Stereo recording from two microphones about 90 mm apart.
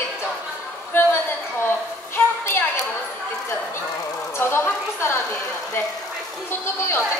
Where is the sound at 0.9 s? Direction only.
25° left (ahead or behind).